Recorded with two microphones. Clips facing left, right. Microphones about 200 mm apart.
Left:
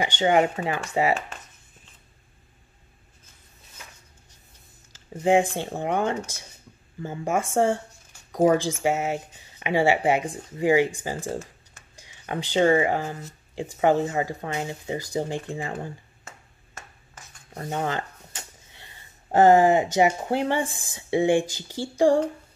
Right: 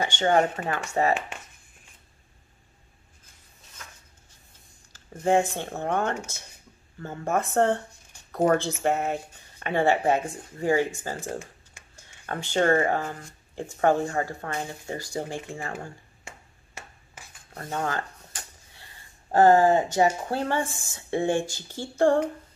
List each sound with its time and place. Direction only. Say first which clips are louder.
0.0 s speech: left 2 dB; 10° left (ahead or behind)
4.9 s speech: left 2 dB; 15° left (ahead or behind)
17.6 s a sound: left 2 dB; 20° left (ahead or behind)
19.3 s speech: left 1 dB; 20° left (ahead or behind)